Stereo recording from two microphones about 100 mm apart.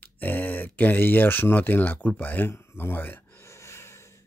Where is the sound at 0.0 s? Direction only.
20° left (ahead or behind).